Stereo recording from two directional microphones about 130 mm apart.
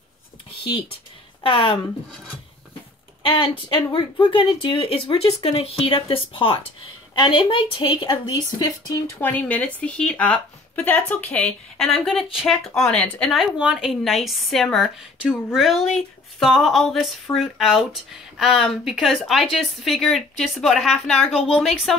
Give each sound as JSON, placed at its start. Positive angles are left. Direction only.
{"t": 1.4, "sound": "a woman's voice", "side_deg": 40}
{"t": 3.2, "sound": "a sound", "side_deg": 45}
{"t": 3.8, "sound": "a woman's voice", "side_deg": 40}
{"t": 8.5, "sound": "speech", "side_deg": 25}
{"t": 9.2, "sound": "speech", "side_deg": 10}
{"t": 13.3, "sound": "speech", "side_deg": -5}